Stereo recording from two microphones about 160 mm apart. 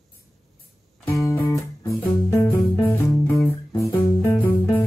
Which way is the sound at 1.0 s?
20° left (ahead or behind).